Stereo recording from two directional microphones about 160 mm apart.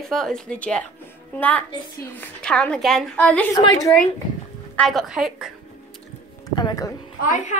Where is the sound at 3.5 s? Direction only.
20° left (ahead or behind).